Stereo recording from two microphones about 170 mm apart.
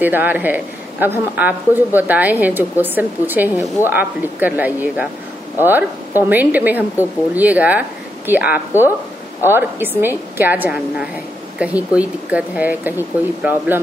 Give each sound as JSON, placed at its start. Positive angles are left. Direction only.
{"t": 0.0, "sound": "speech", "side_deg": -10}